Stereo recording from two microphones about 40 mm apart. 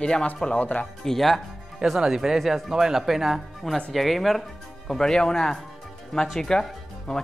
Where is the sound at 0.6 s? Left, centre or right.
Left.